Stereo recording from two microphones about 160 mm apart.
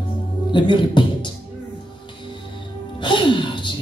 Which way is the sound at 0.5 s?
30° left (ahead or behind).